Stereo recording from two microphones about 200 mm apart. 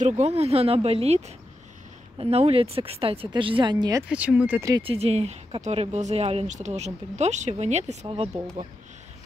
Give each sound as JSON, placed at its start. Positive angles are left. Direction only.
{"t": 0.0, "sound": "speech", "side_deg": -30}
{"t": 4.1, "sound": "speech", "side_deg": -5}
{"t": 4.8, "sound": "speech", "side_deg": -30}